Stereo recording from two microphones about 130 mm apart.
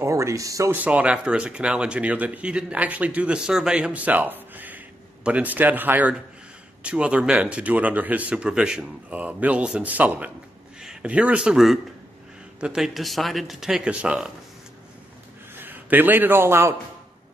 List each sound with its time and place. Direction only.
0.0 s speech: 25° right (ahead or behind)
0.8 s speech: 10° right (ahead or behind)
15.5 s a man's voice: 15° right (ahead or behind)